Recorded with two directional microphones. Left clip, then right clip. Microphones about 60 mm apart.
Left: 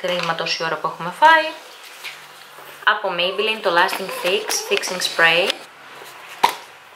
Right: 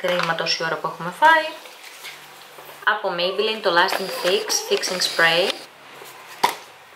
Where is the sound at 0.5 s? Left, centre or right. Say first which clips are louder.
Left 1 dB; centre.